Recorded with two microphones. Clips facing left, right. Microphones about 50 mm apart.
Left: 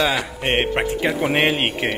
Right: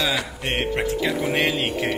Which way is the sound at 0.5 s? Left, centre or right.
Left.